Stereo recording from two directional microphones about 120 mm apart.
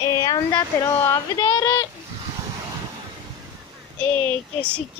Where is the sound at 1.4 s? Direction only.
35° left (ahead or behind).